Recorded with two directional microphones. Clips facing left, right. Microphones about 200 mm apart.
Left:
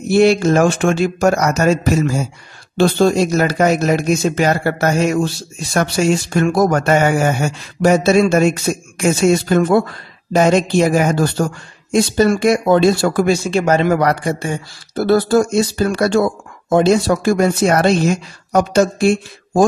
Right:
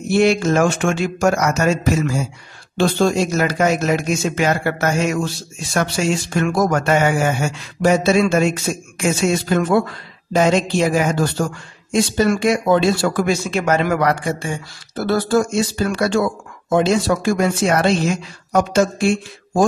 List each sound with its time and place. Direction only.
0.1 s speech: 35° left (ahead or behind)
2.8 s speech: 35° left (ahead or behind)